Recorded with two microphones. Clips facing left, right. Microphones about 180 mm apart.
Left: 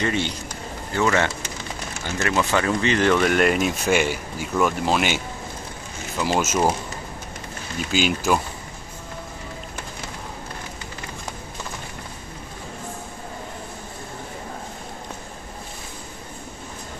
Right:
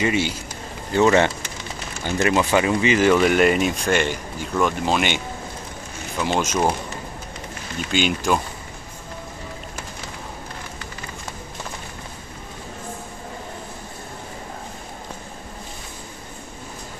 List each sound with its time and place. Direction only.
0.0 s a man's voice: 5° right (ahead or behind)
0.9 s speech: 20° right (ahead or behind); by 6.7 s 5° left (ahead or behind)
7.9 s speech: 5° left (ahead or behind)